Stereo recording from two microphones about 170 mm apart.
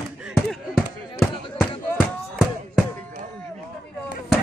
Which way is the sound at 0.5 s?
Centre (ahead or behind).